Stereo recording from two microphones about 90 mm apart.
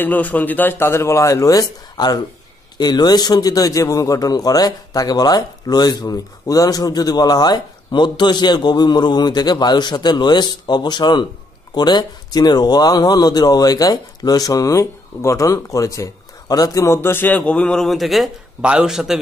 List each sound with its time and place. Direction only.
0.0 s a man's voice: 20° left (ahead or behind); by 19.1 s 5° right (ahead or behind)